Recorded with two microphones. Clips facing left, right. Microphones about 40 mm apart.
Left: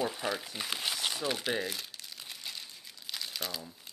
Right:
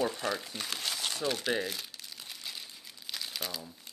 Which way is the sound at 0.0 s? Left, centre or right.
Centre.